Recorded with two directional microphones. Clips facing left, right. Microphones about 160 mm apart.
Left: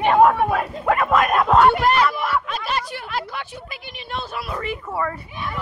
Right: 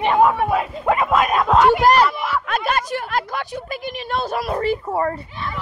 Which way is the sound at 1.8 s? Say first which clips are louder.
Right 3 dB; 40° right (ahead or behind).